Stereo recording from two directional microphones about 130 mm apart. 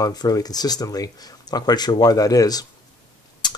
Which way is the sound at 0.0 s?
30° left (ahead or behind).